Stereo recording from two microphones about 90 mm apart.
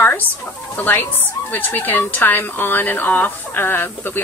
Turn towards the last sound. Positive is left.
turn(degrees=25)  # may be behind; listen again after turning